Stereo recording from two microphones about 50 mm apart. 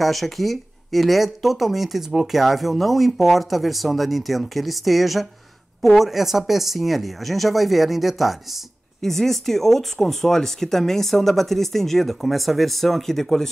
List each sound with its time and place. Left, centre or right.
0.0 s speech: centre